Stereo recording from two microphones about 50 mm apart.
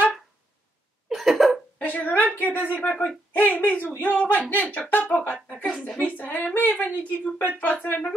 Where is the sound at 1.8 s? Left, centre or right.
Left.